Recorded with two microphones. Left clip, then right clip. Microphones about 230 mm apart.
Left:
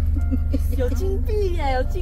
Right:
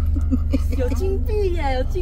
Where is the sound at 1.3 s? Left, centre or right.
Centre.